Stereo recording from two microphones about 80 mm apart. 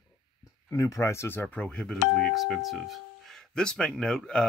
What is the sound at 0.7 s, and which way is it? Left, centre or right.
Speech, left.